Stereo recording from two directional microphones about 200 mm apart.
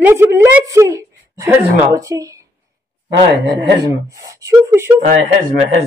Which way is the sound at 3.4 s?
60° right (ahead or behind).